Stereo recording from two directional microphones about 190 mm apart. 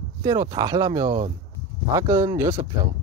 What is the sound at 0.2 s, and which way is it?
Speech, 20° right (ahead or behind).